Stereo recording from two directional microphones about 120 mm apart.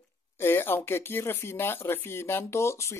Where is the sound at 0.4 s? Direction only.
20° left (ahead or behind).